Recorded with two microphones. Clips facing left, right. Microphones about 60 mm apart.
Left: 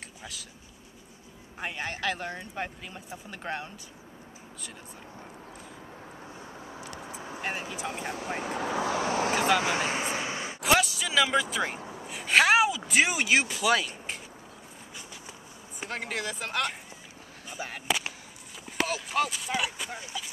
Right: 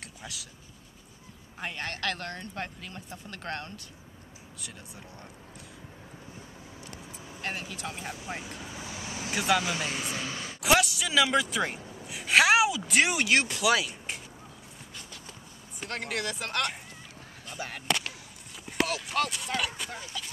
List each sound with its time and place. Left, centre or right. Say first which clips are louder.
0.2 s speech: right 1 dB; centre
1.6 s speech: left 1 dB; centre
6.7 s vehicle: left 6 dB; left
8.4 s speech: left 10 dB; left
9.6 s speech: left 4 dB; left
10.6 s speech: even; centre
12.1 s a sound: even; centre
15.8 s speech: even; centre
18.7 s clip-clop: right 1 dB; centre